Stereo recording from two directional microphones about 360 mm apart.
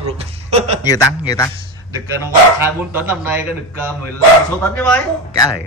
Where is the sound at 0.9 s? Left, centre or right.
Centre.